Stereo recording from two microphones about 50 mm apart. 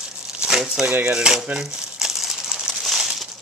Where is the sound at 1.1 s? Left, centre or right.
Centre.